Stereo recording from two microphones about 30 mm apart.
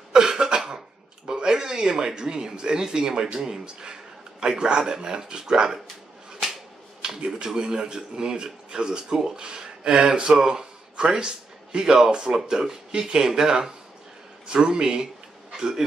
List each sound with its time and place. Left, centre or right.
0.1 s cough: right
1.2 s speech: right
7.2 s a man's voice: right
15.5 s bee: centre